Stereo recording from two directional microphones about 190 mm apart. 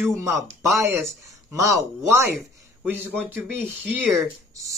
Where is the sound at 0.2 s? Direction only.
15° right (ahead or behind).